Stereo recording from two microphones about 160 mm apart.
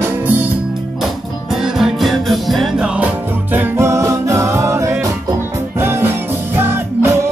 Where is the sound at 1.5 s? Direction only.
Centre (ahead or behind).